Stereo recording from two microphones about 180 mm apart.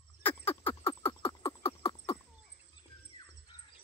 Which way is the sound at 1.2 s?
15° left (ahead or behind).